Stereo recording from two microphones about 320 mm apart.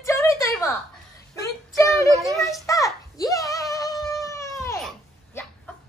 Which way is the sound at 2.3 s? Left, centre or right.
Centre.